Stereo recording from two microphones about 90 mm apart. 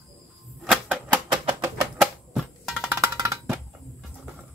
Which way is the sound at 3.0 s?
40° right (ahead or behind).